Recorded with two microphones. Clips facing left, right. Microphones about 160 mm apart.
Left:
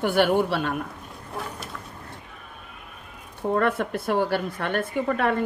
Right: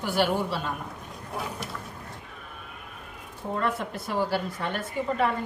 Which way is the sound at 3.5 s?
55° left (ahead or behind).